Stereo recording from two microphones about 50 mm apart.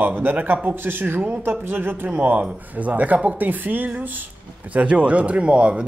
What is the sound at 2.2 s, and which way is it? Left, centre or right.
Speech, right.